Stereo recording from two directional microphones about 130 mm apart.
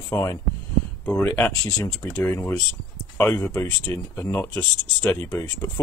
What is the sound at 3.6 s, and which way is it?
Speech, 20° left (ahead or behind).